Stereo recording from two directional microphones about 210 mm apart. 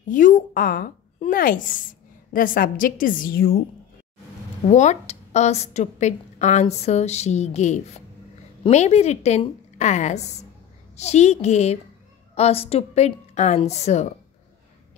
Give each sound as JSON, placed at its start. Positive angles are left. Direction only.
{"t": 0.1, "sound": "speech", "side_deg": 40}
{"t": 4.6, "sound": "a woman's voice", "side_deg": 35}